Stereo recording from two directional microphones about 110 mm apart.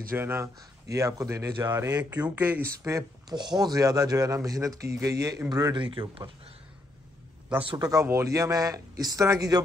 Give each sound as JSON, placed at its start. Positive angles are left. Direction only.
{"t": 0.1, "sound": "speech", "side_deg": -20}
{"t": 2.3, "sound": "speech", "side_deg": -15}
{"t": 2.8, "sound": "a man's voice", "side_deg": -30}
{"t": 7.6, "sound": "a man's voice", "side_deg": -40}